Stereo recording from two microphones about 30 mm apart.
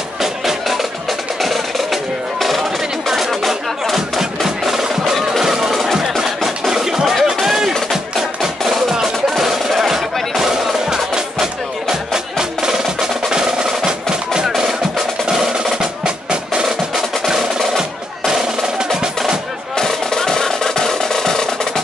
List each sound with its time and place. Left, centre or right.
0.2 s music: centre
1.4 s music: centre
3.1 s music: centre
6.7 s music: centre
10.5 s music: right
16.6 s music: centre
19.8 s music: centre